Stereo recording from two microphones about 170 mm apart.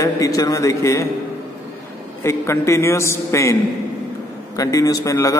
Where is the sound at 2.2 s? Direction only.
15° left (ahead or behind).